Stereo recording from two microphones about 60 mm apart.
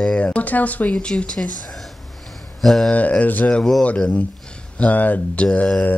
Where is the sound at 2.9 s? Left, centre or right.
Left.